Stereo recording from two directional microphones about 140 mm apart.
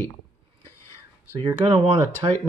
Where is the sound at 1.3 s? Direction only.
35° right (ahead or behind).